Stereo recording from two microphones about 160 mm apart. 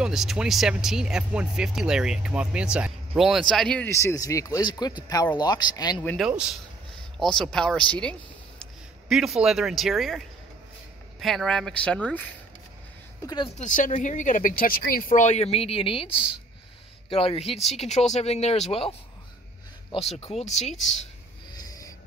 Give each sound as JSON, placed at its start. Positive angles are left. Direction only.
{"t": 0.0, "sound": "speech", "side_deg": -5}
{"t": 3.9, "sound": "speech", "side_deg": 20}
{"t": 6.1, "sound": "speech", "side_deg": -5}
{"t": 13.2, "sound": "speech", "side_deg": 25}
{"t": 13.6, "sound": "speech", "side_deg": 55}
{"t": 21.5, "sound": "a sound", "side_deg": 20}